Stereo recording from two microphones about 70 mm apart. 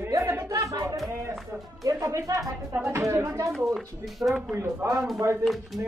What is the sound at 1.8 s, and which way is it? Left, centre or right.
Speech, right.